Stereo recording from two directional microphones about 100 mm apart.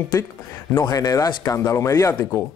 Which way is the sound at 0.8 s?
40° left (ahead or behind).